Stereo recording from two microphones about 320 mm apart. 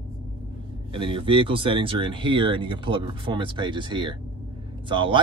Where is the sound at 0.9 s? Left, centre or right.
Centre.